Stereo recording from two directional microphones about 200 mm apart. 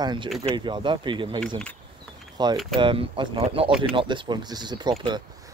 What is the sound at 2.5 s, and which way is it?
Speech, centre (ahead or behind).